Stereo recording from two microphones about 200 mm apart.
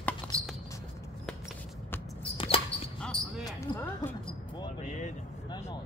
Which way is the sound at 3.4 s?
20° left (ahead or behind).